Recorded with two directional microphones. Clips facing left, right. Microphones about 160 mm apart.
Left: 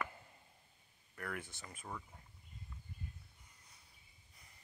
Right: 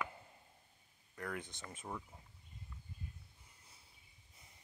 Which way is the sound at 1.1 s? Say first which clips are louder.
Right 1 dB; 20° right (ahead or behind).